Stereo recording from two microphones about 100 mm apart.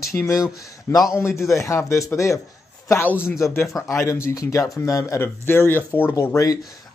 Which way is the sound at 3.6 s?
Centre (ahead or behind).